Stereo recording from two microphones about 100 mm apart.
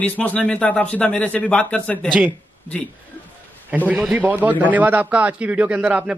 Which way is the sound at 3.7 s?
15° right (ahead or behind).